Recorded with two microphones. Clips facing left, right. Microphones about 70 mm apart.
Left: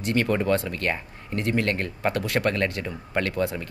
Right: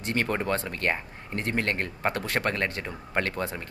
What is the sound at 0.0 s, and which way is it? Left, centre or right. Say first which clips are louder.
A man's voice: left 4 dB; right.